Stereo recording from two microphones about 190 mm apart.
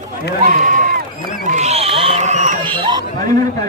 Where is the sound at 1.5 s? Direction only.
35° right (ahead or behind).